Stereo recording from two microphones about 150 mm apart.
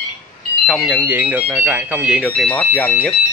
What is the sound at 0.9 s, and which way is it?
Speech, 10° right (ahead or behind).